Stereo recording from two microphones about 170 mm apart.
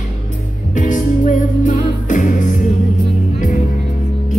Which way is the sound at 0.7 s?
50° left (ahead or behind).